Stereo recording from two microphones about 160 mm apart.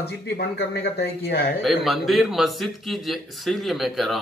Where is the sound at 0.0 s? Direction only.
90° left.